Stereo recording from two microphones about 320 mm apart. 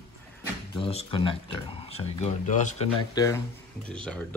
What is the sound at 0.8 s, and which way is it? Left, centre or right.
Speech, centre.